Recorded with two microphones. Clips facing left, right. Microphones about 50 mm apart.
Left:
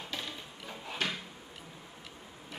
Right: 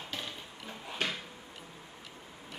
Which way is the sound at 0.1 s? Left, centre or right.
Centre.